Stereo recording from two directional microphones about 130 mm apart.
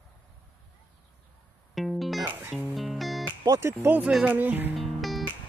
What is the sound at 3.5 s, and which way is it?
Speech, 20° right (ahead or behind).